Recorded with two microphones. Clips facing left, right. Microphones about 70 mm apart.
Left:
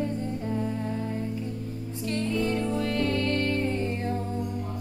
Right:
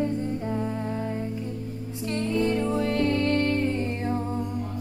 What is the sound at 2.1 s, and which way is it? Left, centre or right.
Music, right.